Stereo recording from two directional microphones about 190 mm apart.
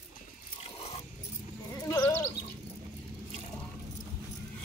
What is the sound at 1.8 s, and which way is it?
Sheep, 20° left (ahead or behind).